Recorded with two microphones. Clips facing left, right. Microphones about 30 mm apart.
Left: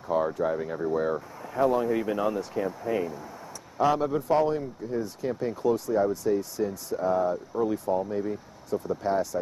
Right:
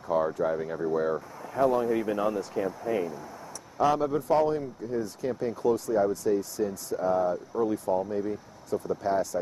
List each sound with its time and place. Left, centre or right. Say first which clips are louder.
0.1 s speech: even; centre